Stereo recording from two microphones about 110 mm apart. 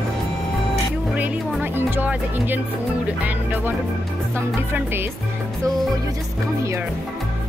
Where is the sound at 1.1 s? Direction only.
15° right (ahead or behind).